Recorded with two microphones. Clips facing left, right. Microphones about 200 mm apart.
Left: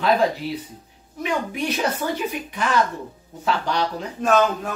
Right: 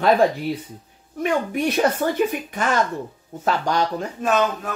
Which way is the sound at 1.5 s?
50° right (ahead or behind).